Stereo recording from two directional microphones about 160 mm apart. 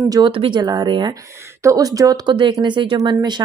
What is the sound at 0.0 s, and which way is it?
Speech, 20° right (ahead or behind).